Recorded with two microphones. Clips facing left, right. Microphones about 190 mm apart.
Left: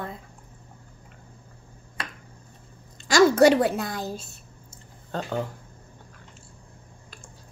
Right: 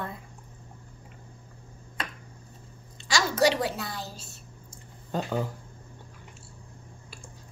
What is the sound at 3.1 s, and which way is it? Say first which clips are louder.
A woman's voice: left 8 dB; 50° left (ahead or behind).